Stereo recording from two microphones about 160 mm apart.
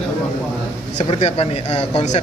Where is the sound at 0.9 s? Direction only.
40° left (ahead or behind).